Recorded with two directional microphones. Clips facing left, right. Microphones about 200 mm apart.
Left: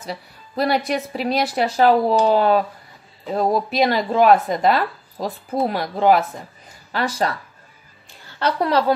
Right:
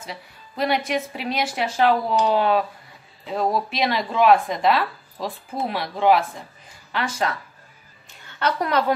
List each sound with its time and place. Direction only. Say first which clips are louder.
0.0 s a woman's voice: left 5 dB; 35° left (ahead or behind)